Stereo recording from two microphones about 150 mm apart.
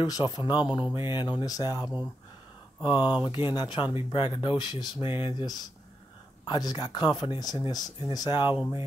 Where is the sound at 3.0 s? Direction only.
30° left (ahead or behind).